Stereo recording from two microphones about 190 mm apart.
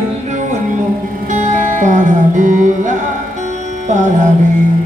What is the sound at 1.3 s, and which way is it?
Music, 40° right (ahead or behind).